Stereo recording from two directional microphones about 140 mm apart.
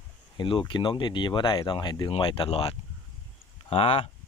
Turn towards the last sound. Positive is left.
turn(degrees=45)  # may be behind; listen again after turning